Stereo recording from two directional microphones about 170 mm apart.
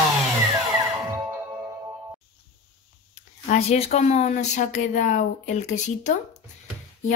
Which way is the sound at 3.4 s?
40° left (ahead or behind).